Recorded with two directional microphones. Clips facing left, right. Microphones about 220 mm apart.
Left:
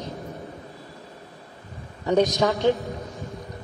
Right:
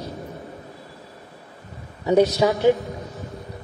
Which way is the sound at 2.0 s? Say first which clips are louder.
Right 3 dB; 10° right (ahead or behind).